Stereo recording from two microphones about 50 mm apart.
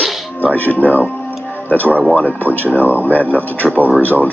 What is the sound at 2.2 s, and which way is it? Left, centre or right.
Speech, left.